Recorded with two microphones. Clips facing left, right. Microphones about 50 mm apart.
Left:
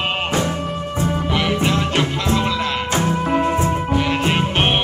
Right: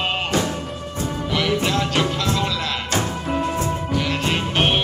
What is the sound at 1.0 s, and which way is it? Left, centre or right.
Music, left.